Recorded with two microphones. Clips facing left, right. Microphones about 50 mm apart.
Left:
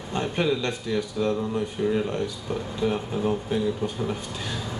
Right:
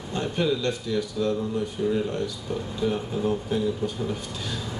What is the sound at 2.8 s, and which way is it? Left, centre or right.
Speech, left.